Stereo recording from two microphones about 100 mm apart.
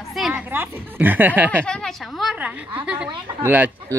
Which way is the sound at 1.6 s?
5° left (ahead or behind).